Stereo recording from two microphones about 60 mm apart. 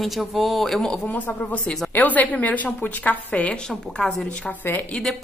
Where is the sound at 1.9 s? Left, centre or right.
Left.